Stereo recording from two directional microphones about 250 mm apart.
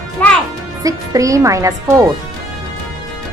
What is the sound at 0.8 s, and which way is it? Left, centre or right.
A woman's voice, centre.